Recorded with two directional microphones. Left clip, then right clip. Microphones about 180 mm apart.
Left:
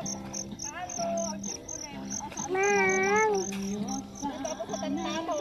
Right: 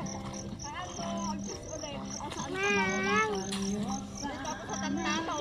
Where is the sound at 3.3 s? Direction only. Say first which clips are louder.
Left 5 dB; 10° left (ahead or behind).